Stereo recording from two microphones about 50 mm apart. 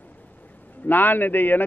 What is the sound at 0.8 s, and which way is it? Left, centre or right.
Speech, left.